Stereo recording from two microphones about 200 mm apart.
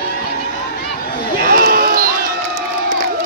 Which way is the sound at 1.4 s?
50° right (ahead or behind).